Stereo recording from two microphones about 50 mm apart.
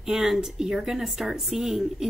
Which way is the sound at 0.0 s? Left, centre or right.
Centre.